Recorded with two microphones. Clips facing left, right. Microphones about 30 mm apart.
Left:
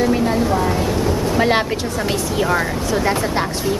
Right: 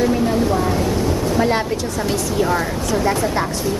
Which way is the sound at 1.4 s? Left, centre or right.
Left.